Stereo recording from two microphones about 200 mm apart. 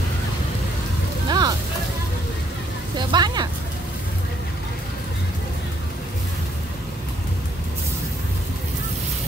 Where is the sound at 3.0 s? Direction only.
20° right (ahead or behind).